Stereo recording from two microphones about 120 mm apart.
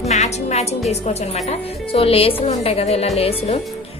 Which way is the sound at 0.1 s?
70° left (ahead or behind).